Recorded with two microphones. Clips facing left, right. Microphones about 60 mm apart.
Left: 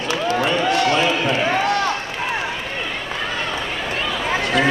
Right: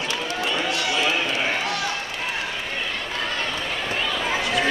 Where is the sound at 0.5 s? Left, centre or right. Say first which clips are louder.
Left 6 dB; left.